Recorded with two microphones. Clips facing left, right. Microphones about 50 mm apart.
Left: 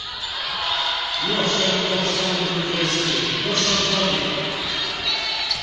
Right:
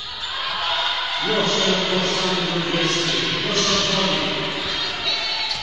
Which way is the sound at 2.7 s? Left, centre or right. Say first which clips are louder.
Right 3 dB; centre.